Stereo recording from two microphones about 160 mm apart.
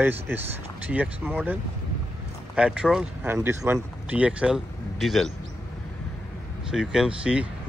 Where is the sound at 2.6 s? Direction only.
5° right (ahead or behind).